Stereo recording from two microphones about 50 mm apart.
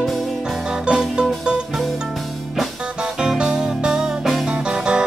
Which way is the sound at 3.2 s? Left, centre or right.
Centre.